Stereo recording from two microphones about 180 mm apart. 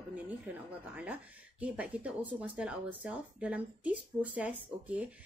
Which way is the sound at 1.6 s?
5° right (ahead or behind).